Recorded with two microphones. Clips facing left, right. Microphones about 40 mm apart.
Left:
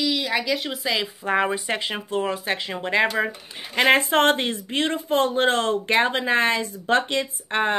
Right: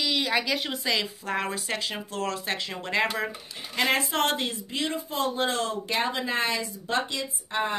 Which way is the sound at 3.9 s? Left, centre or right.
Left.